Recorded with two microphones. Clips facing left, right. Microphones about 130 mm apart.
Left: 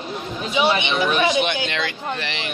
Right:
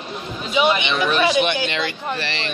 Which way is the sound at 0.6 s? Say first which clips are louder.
Right 1 dB; 20° left (ahead or behind).